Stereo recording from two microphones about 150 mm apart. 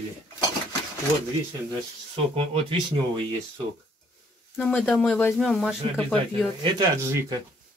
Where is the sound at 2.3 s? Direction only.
40° right (ahead or behind).